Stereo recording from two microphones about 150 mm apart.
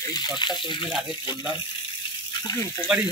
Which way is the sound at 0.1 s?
30° left (ahead or behind).